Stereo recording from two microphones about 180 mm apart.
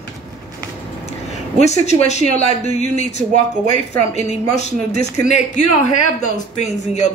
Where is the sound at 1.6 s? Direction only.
40° left (ahead or behind).